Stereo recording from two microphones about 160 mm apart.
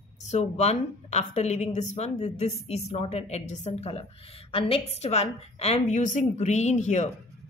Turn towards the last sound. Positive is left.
turn(degrees=45)  # may be behind; listen again after turning